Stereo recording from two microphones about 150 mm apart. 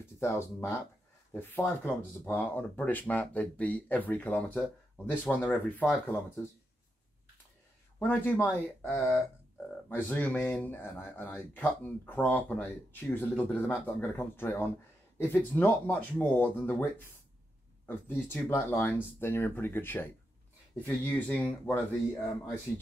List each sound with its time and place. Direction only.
0.0 s speech: 15° left (ahead or behind)
8.0 s speech: 15° left (ahead or behind)
17.8 s speech: 15° left (ahead or behind)